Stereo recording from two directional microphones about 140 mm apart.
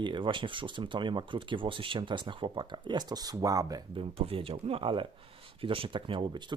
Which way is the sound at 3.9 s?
40° right (ahead or behind).